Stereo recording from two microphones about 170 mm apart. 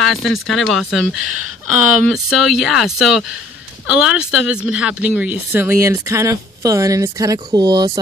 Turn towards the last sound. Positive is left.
turn(degrees=-25)  # may be behind; listen again after turning